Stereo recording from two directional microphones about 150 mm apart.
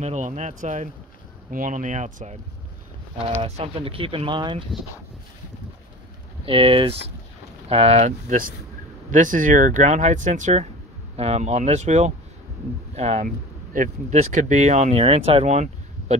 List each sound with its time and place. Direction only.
0.0 s speech: 50° right (ahead or behind)
3.4 s speech: 40° right (ahead or behind)
6.4 s speech: 40° right (ahead or behind)